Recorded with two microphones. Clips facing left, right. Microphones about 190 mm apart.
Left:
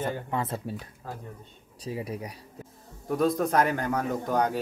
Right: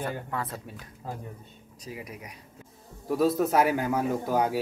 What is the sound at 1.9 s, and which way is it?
Speech, 30° left (ahead or behind).